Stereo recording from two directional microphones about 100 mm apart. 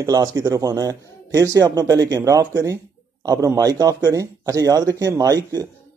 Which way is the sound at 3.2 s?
35° right (ahead or behind).